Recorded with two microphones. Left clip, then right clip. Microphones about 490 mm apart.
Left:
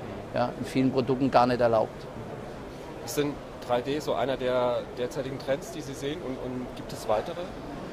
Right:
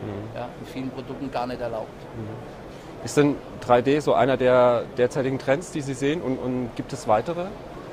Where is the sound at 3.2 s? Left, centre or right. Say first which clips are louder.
Right 9 dB; right.